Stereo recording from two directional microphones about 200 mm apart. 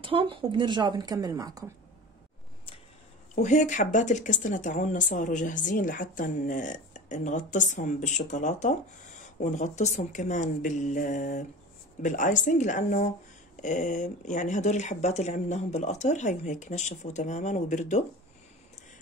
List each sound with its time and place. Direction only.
0.0 s a woman's voice: 25° right (ahead or behind)
3.3 s speech: 35° left (ahead or behind)